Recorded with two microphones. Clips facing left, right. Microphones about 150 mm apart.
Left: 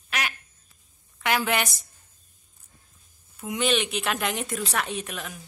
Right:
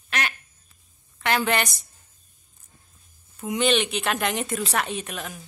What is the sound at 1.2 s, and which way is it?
Speech, 5° left (ahead or behind).